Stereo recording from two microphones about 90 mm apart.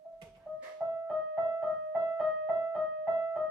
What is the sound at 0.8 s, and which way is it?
Music, 15° right (ahead or behind).